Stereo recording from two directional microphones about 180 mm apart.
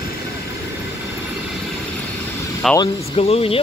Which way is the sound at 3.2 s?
35° left (ahead or behind).